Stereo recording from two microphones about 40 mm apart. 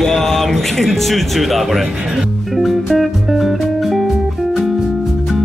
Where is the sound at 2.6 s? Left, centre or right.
Centre.